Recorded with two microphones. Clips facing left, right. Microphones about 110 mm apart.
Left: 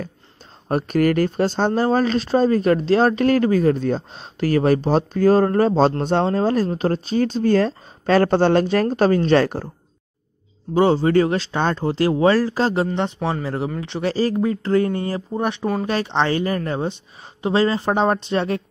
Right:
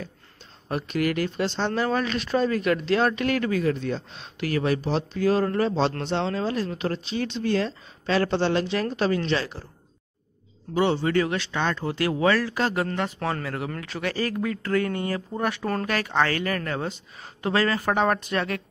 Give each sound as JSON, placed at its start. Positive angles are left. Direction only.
{"t": 0.7, "sound": "speech", "side_deg": 45}
{"t": 10.7, "sound": "a woman's voice", "side_deg": 35}
{"t": 15.6, "sound": "speech", "side_deg": 10}
{"t": 15.9, "sound": "a woman's voice", "side_deg": 25}